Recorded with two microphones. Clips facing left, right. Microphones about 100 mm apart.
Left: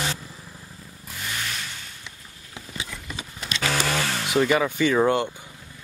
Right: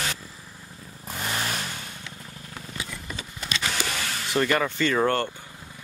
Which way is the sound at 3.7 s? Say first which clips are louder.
Left 5 dB; 65° left (ahead or behind).